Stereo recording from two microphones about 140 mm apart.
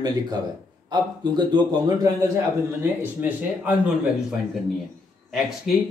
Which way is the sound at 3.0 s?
15° right (ahead or behind).